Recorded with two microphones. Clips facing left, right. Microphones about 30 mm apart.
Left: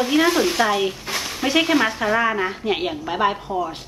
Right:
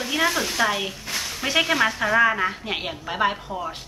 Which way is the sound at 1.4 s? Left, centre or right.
Centre.